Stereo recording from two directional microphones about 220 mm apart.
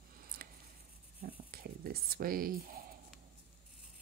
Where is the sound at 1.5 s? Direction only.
40° right (ahead or behind).